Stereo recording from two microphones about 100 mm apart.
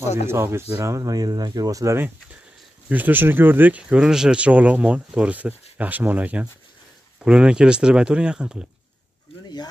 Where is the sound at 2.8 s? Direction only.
20° right (ahead or behind).